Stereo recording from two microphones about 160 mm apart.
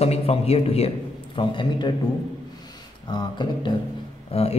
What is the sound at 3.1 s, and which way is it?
A man's voice, 30° left (ahead or behind).